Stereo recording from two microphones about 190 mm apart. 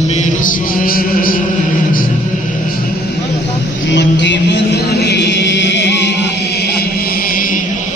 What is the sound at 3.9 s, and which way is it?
Chant, 70° left (ahead or behind).